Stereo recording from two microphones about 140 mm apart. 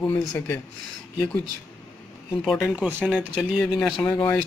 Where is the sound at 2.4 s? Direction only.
Centre (ahead or behind).